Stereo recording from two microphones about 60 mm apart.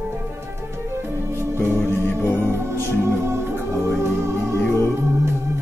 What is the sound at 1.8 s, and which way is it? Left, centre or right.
Music, left.